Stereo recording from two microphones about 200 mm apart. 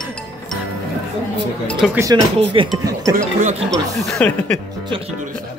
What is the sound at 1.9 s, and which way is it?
Speech, 15° right (ahead or behind).